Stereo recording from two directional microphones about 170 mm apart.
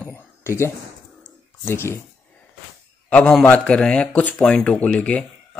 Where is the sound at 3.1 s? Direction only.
5° left (ahead or behind).